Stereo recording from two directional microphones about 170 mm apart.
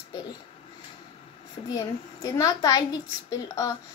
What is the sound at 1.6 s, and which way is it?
A child's voice, 20° left (ahead or behind).